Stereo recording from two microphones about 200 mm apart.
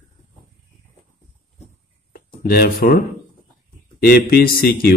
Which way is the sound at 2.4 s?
50° left (ahead or behind).